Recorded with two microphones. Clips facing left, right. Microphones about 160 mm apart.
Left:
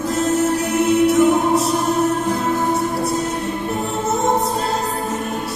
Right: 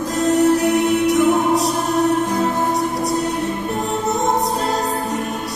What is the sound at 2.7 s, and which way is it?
Music, centre (ahead or behind).